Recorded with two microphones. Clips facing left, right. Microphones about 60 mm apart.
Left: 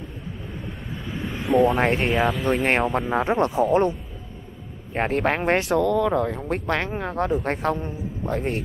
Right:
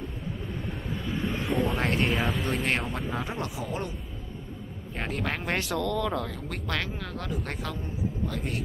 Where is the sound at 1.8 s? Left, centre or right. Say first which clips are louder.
Left 6 dB; left.